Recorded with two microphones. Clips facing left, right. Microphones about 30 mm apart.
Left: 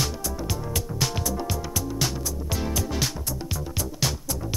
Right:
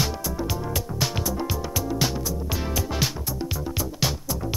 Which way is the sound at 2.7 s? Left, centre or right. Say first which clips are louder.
Right 1 dB; centre.